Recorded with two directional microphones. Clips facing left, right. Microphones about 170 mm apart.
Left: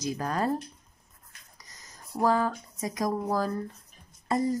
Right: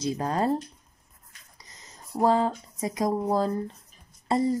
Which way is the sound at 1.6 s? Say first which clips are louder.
Right 2 dB; 25° right (ahead or behind).